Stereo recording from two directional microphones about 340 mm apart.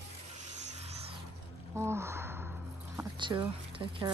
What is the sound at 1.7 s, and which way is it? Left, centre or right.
Gasp, centre.